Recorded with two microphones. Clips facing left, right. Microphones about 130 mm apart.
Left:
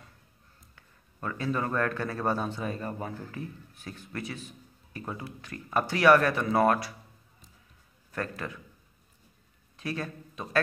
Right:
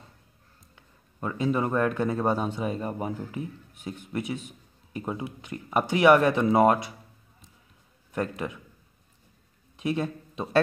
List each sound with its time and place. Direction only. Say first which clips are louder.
0.7 s a man's voice: right 5 dB; 20° right (ahead or behind)
8.1 s a man's voice: right 5 dB; 20° right (ahead or behind)
9.8 s speech: right 7 dB; 20° right (ahead or behind)